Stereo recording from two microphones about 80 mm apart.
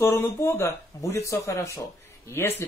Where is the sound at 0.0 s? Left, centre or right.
Left.